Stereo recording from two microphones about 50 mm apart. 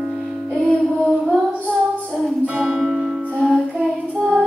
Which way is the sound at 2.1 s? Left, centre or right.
Centre.